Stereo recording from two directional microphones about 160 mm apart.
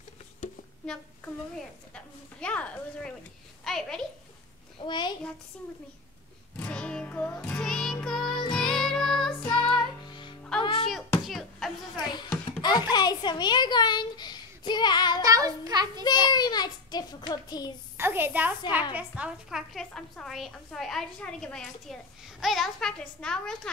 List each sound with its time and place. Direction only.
2.0 s a woman's voice: 10° left (ahead or behind)
4.7 s a child's voice: 30° left (ahead or behind)
6.5 s music: 5° left (ahead or behind)
10.0 s music: 30° left (ahead or behind)
11.2 s a sound: centre (ahead or behind)
12.0 s music: 25° left (ahead or behind)
12.9 s a sound: 25° left (ahead or behind)
15.2 s child singing: 20° right (ahead or behind)
16.0 s a child's voice: 25° left (ahead or behind)
17.9 s a woman's voice: 15° right (ahead or behind); by 23.7 s 5° left (ahead or behind)